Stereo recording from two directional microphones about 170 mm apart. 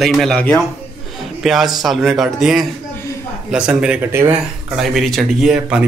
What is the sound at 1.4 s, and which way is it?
Speech, centre (ahead or behind).